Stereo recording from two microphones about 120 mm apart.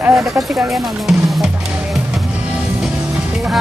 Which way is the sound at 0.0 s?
20° right (ahead or behind).